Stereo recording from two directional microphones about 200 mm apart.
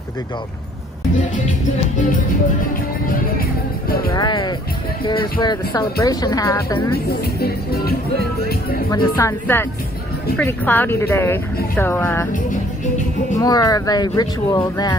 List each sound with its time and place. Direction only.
4.1 s speech: 20° left (ahead or behind)
7.1 s speech: 50° left (ahead or behind)
8.9 s speech: 15° left (ahead or behind)
13.4 s speech: 20° left (ahead or behind)